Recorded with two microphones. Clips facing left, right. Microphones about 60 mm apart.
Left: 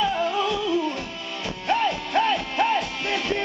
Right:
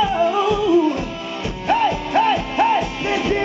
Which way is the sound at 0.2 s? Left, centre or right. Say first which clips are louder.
Right 7 dB; right.